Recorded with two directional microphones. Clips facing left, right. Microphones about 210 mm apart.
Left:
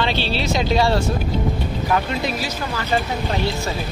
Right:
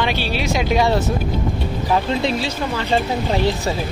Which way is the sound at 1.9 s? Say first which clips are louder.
Right 4 dB; 25° right (ahead or behind).